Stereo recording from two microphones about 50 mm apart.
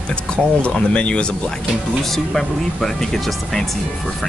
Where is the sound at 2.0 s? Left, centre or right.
Centre.